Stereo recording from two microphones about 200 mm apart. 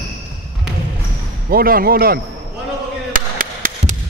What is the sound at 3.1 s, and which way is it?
Chop, 45° right (ahead or behind).